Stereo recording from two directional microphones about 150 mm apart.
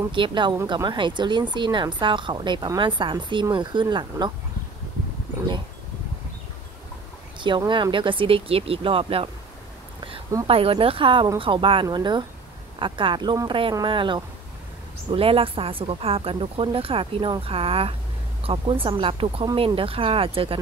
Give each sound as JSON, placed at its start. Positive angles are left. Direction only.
{"t": 0.1, "sound": "a woman's voice", "side_deg": -30}
{"t": 7.3, "sound": "a woman's voice", "side_deg": -30}
{"t": 10.4, "sound": "a woman's voice", "side_deg": -40}